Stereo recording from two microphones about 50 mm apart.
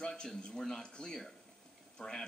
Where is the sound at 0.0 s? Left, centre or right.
Centre.